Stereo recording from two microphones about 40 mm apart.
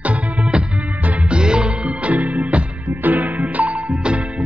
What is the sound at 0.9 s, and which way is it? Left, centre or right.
Music, right.